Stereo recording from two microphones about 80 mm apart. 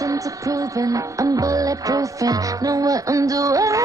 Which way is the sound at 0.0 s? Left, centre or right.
Right.